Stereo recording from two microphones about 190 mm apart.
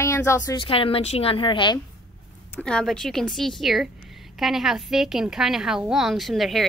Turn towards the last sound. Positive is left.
turn(degrees=0)  # may be behind; listen again after turning